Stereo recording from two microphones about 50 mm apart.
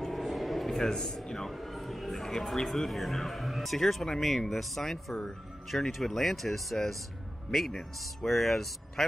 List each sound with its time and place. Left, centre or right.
0.0 s a man's voice: centre